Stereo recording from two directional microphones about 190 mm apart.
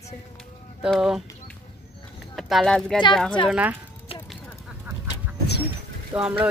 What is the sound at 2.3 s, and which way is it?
Speech, centre (ahead or behind).